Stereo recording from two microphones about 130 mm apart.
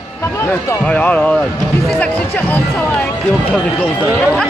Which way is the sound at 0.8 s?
10° left (ahead or behind).